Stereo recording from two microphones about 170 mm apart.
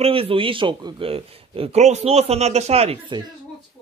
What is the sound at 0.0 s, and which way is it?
A man's voice, 35° right (ahead or behind).